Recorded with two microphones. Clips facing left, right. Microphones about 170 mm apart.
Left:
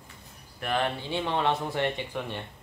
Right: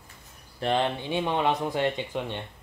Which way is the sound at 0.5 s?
25° right (ahead or behind).